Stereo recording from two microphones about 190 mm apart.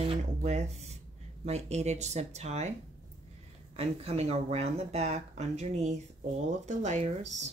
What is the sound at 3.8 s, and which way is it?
Speech, 30° right (ahead or behind).